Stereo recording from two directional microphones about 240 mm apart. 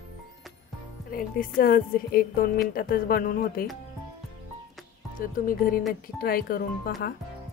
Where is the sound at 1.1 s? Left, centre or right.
Left.